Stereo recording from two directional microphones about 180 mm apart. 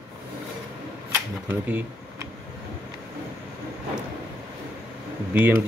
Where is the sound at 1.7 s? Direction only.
10° right (ahead or behind).